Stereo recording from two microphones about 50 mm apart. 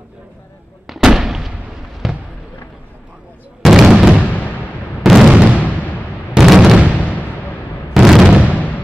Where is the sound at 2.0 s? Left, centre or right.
Centre.